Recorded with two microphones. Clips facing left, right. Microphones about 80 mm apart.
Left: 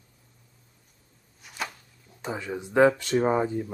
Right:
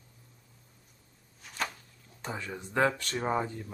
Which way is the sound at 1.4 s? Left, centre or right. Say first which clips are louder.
Even; centre.